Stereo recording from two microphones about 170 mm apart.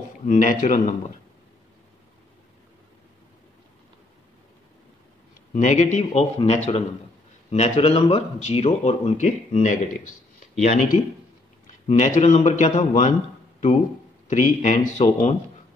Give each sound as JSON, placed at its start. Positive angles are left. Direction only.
{"t": 0.3, "sound": "a man's voice", "side_deg": 50}
{"t": 5.5, "sound": "a man's voice", "side_deg": 45}
{"t": 14.2, "sound": "a man's voice", "side_deg": 50}